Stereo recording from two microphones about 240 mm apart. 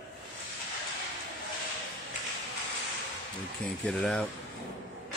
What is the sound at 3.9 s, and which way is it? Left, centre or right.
Speech, centre.